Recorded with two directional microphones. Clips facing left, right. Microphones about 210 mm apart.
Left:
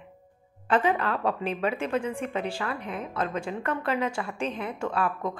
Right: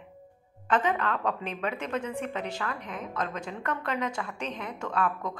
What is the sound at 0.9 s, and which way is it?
Speech, 30° left (ahead or behind).